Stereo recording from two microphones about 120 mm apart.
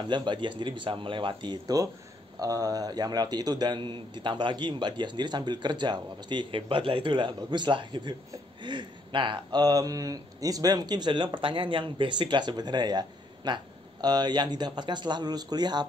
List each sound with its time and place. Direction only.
0.0 s a man's voice: 40° right (ahead or behind)